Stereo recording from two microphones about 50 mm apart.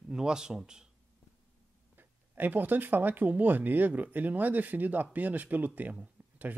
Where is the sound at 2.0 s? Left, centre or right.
Right.